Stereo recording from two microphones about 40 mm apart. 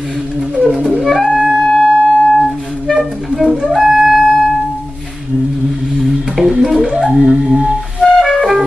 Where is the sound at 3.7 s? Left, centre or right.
Centre.